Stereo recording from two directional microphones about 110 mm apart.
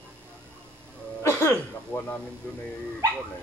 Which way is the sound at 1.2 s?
20° left (ahead or behind).